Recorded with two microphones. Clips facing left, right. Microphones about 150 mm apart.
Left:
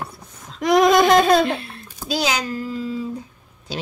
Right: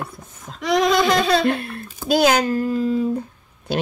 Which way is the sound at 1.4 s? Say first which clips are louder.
Right 1 dB; 55° right (ahead or behind).